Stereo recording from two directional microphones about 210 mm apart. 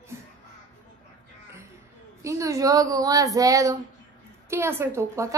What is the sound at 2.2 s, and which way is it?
A woman's voice, 15° right (ahead or behind).